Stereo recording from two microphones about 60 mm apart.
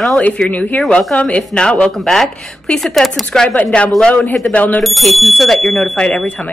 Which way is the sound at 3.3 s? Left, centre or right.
Centre.